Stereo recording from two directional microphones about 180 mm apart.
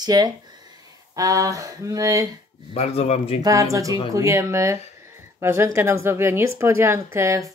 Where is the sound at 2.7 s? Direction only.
35° left (ahead or behind).